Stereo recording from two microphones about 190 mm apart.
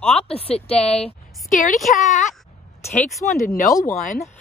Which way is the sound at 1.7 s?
Centre (ahead or behind).